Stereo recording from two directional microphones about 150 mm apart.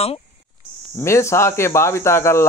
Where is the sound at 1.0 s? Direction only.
20° left (ahead or behind).